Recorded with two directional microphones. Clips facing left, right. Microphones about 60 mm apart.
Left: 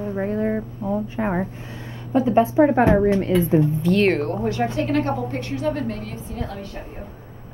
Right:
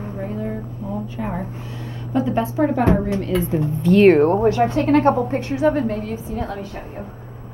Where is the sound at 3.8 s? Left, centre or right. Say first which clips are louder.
Right 6 dB; centre.